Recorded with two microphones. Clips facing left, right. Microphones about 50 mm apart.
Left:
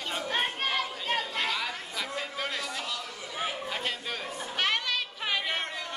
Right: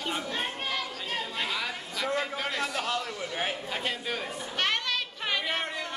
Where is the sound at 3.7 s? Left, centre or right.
Centre.